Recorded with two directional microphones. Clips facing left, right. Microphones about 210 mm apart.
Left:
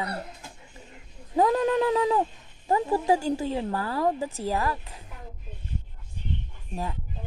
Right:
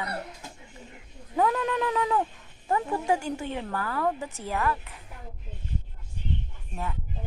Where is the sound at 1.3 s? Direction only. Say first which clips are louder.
Left 4 dB; 30° left (ahead or behind).